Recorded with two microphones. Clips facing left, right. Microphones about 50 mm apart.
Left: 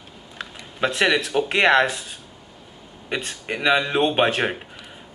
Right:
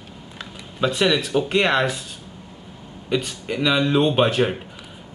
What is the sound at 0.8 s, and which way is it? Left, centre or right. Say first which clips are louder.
Speech: even; left.